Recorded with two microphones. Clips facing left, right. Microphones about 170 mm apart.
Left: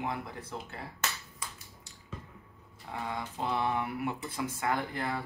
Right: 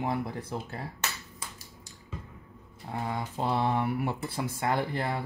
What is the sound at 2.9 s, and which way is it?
Speech, 40° right (ahead or behind).